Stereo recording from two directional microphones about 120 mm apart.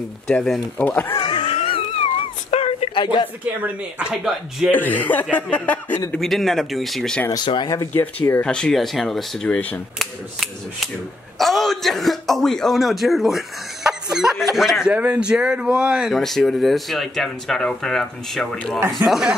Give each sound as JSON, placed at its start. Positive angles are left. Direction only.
{"t": 0.3, "sound": "speech", "side_deg": 0}
{"t": 0.7, "sound": "speech", "side_deg": 15}
{"t": 1.1, "sound": "wail", "side_deg": 40}
{"t": 2.9, "sound": "a woman's voice", "side_deg": 40}
{"t": 3.6, "sound": "speech", "side_deg": -5}
{"t": 4.7, "sound": "speech", "side_deg": 15}
{"t": 6.1, "sound": "speech", "side_deg": 0}
{"t": 7.3, "sound": "speech", "side_deg": 40}
{"t": 7.7, "sound": "speech", "side_deg": 25}
{"t": 8.0, "sound": "speech", "side_deg": 15}